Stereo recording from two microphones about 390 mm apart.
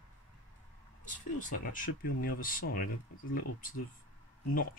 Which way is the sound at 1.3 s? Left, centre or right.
Centre.